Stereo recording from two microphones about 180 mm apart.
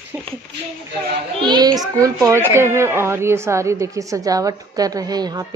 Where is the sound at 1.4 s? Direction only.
25° right (ahead or behind).